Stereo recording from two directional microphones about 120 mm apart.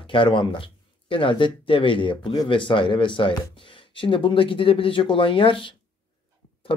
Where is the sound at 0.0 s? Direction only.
45° left (ahead or behind).